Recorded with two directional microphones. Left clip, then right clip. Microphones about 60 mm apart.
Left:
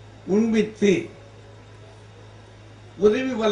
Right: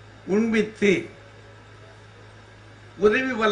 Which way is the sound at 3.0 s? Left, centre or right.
Right.